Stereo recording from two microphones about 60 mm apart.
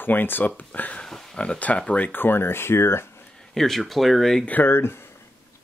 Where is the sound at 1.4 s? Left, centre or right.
Left.